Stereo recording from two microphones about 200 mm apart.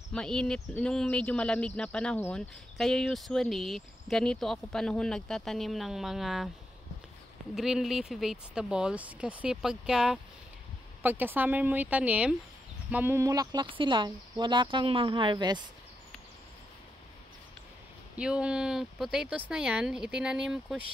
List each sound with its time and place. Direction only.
0.1 s speech: 5° left (ahead or behind)
7.5 s speech: centre (ahead or behind); by 15.6 s 20° right (ahead or behind)
18.1 s speech: 5° right (ahead or behind)